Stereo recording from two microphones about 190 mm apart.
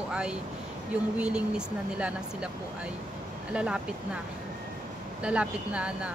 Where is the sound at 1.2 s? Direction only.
5° right (ahead or behind).